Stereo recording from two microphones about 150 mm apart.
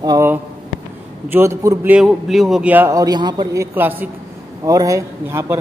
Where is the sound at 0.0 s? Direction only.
25° right (ahead or behind).